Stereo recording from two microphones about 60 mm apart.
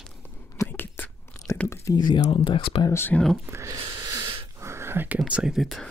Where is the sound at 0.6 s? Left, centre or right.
Left.